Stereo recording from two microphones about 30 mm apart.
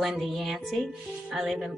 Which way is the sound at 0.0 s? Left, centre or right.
Centre.